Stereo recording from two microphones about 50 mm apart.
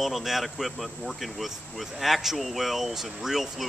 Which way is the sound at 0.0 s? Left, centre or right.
Centre.